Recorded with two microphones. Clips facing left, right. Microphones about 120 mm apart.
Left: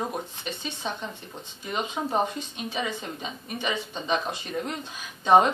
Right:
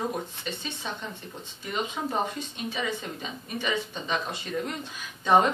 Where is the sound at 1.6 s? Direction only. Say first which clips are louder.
Left 1 dB; 20° left (ahead or behind).